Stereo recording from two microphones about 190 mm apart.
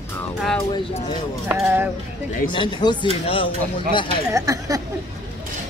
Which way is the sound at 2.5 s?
25° left (ahead or behind).